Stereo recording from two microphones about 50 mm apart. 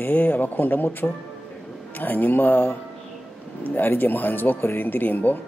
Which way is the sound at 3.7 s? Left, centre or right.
Left.